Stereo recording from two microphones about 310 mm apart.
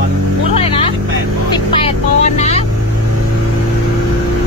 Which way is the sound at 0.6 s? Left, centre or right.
Centre.